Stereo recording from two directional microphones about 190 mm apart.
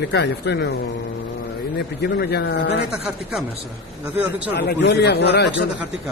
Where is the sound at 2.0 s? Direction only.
60° left (ahead or behind).